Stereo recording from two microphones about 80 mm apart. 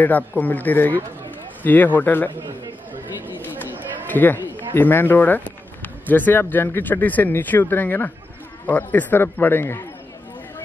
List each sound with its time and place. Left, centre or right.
0.4 s speech: left
4.1 s speech: left